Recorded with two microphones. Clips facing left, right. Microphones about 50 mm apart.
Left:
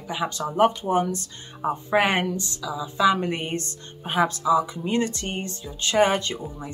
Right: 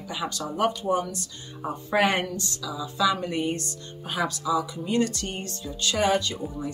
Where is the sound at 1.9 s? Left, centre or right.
Centre.